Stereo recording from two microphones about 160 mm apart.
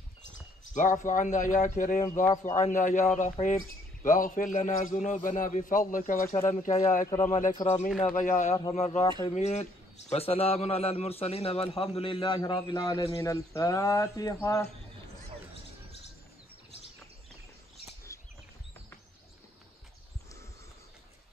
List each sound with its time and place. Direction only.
0.7 s a man's voice: 50° left (ahead or behind)
6.4 s a man's voice: 45° left (ahead or behind); by 14.7 s 20° left (ahead or behind)